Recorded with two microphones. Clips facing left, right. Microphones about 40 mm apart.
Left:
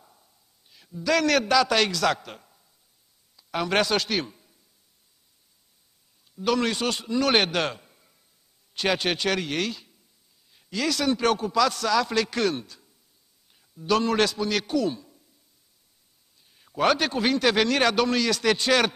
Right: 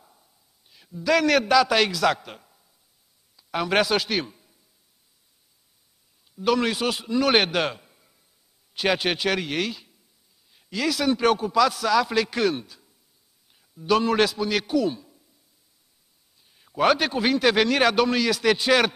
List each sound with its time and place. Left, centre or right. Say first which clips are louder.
0.0 s a sound: even; centre
3.3 s a man's voice: right 2 dB; centre
6.3 s a man's voice: right 2 dB; centre
16.4 s a man's voice: right 2 dB; centre